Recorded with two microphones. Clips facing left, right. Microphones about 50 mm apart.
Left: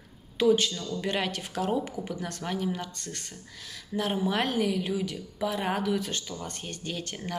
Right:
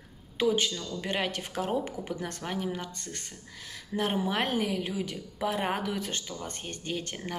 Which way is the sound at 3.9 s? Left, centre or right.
Right.